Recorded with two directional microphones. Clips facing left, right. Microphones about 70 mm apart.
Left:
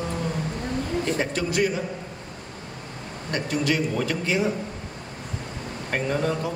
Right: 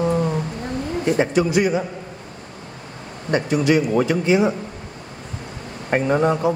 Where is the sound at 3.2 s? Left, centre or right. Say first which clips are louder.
Right 7 dB; centre.